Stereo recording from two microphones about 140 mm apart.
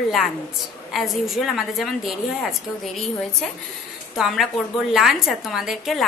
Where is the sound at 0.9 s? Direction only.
Centre (ahead or behind).